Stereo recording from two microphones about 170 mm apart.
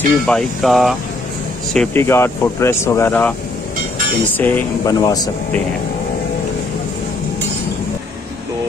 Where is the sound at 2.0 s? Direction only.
15° left (ahead or behind).